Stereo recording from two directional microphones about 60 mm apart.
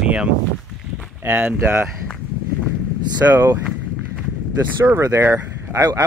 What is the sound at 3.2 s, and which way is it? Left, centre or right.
Speech, right.